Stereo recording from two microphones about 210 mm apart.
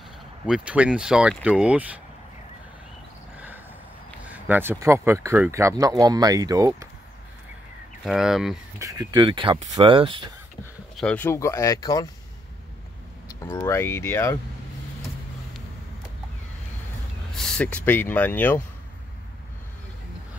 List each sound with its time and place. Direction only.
0.5 s speech: 5° right (ahead or behind)
3.3 s vehicle: 10° right (ahead or behind)
4.3 s speech: 10° right (ahead or behind)
8.0 s speech: centre (ahead or behind)
8.7 s speech: 15° right (ahead or behind)
11.0 s speech: 5° left (ahead or behind)
13.3 s speech: 15° left (ahead or behind)
17.3 s speech: 5° left (ahead or behind)